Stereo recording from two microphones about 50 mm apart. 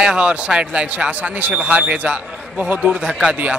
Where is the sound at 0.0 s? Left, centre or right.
Centre.